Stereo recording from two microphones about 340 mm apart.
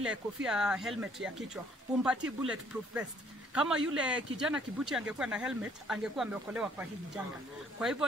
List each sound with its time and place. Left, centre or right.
0.0 s speech: centre